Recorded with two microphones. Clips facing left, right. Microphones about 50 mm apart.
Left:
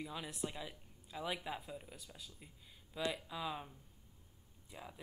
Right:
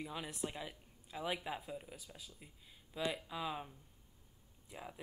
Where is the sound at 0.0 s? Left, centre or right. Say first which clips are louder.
Right 1 dB; centre.